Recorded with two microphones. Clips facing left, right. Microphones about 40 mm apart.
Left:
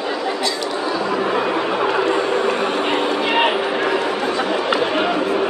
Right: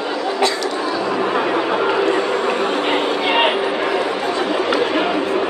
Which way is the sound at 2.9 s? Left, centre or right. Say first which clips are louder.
Right 1 dB; centre.